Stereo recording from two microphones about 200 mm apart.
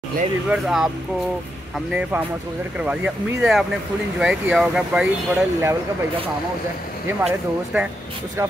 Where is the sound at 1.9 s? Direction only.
5° right (ahead or behind).